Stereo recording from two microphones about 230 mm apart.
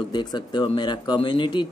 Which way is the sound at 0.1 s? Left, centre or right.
Centre.